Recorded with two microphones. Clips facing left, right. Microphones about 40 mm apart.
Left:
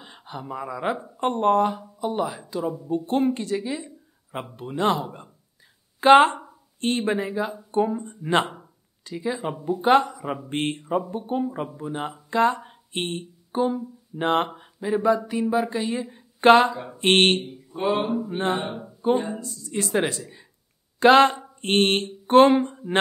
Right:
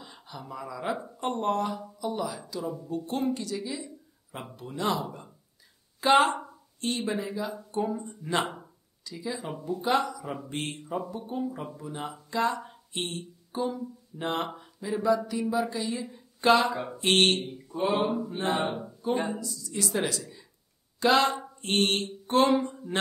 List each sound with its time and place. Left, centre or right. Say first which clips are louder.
0.0 s a woman's voice: left 6 dB; left
18.0 s mantra: left 2 dB; centre
18.3 s speech: left 3 dB; left
21.0 s speech: left 8 dB; left